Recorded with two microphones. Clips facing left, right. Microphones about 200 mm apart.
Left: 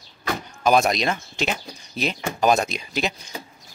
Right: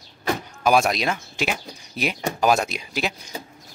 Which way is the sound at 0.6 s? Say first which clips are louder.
Left 1 dB; 5° right (ahead or behind).